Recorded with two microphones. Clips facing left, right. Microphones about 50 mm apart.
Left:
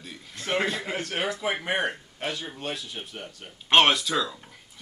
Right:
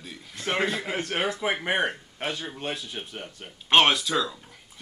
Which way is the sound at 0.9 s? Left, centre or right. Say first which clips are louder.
Right 2 dB; right.